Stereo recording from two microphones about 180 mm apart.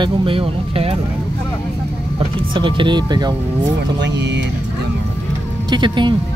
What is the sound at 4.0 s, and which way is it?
Speech, 75° right (ahead or behind).